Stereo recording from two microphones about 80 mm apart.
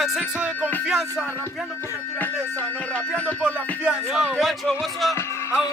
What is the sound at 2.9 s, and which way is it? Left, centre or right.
Speech, centre.